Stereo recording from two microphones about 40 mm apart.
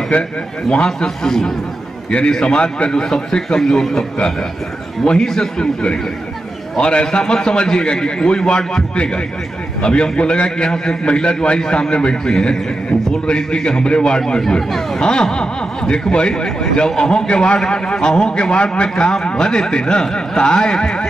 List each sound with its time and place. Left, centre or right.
0.1 s speech: left
0.7 s a man's voice: centre
2.0 s a man's voice: left; by 4.0 s centre
5.0 s speech: centre